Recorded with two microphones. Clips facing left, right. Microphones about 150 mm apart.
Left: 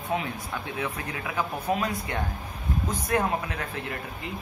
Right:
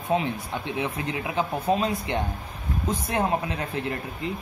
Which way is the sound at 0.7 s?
25° right (ahead or behind).